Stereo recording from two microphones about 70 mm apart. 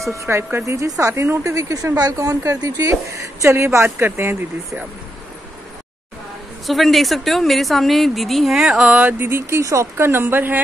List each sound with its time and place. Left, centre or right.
0.1 s a woman's voice: right
0.7 s a woman's voice: right
6.6 s a woman's voice: centre
8.8 s a sound: centre
9.2 s speech: right